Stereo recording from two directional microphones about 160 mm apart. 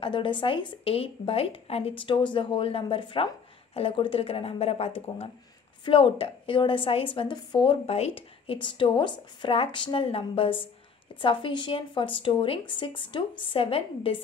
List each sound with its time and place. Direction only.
0.0 s a woman's voice: 30° left (ahead or behind)